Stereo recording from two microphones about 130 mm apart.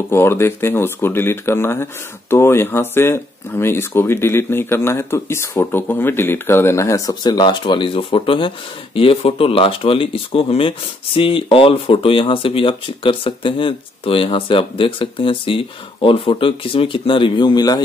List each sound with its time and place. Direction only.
0.1 s speech: 20° left (ahead or behind)